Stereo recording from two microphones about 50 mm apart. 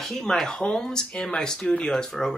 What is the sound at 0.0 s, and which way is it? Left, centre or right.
Speech, centre.